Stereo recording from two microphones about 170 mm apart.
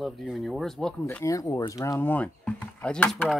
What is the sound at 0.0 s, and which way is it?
Speech, centre (ahead or behind).